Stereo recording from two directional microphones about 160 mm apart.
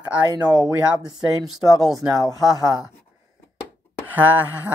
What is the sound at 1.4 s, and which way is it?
Speech, centre (ahead or behind).